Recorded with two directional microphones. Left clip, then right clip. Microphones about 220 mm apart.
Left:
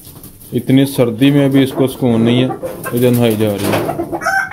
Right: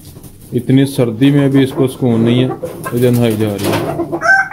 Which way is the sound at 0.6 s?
5° left (ahead or behind).